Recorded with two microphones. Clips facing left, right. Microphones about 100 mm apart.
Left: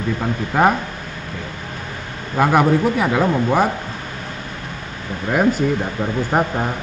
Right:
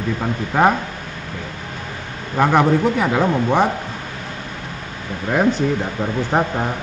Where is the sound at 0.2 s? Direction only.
Centre (ahead or behind).